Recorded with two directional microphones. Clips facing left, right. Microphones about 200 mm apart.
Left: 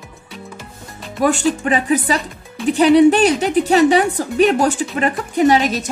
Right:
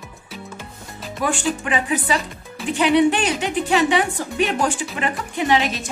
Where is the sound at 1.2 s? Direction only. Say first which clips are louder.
Left 6 dB; 40° left (ahead or behind).